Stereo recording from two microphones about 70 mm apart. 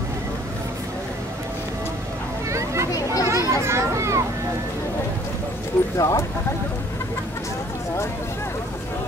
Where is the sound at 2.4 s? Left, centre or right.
Right.